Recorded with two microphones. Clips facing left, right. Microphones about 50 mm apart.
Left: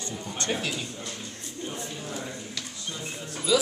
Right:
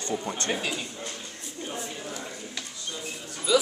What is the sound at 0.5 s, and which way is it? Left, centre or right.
Speech, centre.